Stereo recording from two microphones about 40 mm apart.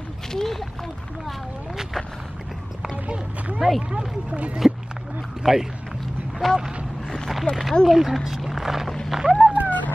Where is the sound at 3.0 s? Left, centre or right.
Right.